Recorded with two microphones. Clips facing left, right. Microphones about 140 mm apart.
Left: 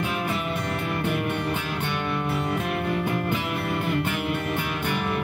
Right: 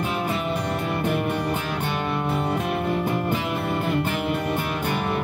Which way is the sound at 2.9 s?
35° right (ahead or behind).